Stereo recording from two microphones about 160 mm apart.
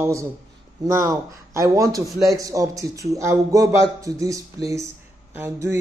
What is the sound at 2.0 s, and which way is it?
Speech, centre (ahead or behind).